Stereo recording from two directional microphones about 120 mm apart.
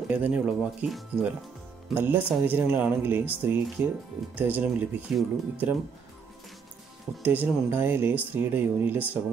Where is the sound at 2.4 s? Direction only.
15° right (ahead or behind).